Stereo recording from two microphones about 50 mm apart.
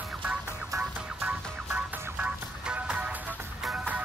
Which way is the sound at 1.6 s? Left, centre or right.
Right.